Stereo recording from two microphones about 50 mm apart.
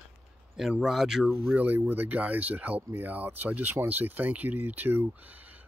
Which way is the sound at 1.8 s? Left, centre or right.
Right.